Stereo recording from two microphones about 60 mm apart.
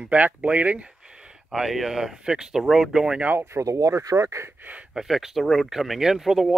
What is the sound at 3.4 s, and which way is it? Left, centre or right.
Speech, right.